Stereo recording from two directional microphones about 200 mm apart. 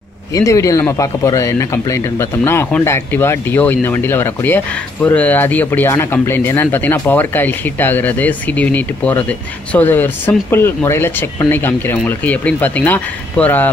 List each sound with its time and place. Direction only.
0.3 s speech: 15° left (ahead or behind)